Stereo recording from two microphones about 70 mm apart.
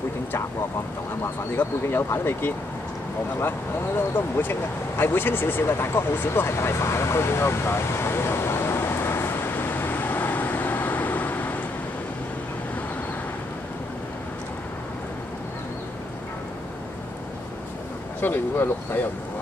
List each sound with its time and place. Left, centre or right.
1.6 s speech: left
5.7 s vehicle: left
18.2 s speech: left